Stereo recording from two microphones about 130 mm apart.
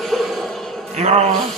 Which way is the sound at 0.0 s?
Centre (ahead or behind).